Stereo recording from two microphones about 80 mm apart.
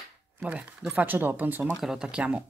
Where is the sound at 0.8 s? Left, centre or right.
Centre.